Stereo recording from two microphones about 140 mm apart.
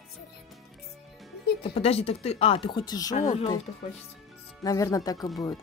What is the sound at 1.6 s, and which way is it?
Speech, 40° left (ahead or behind).